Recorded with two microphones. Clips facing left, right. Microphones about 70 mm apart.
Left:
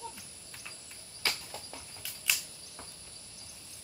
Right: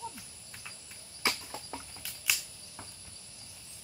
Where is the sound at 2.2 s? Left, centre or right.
Centre.